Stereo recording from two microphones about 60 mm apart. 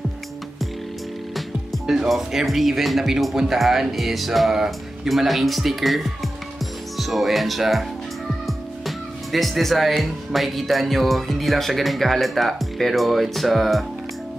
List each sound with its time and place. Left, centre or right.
1.3 s speech: centre